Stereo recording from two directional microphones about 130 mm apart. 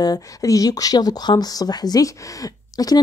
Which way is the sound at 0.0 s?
30° left (ahead or behind).